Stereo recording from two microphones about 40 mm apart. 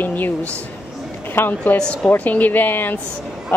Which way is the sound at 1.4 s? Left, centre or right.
Left.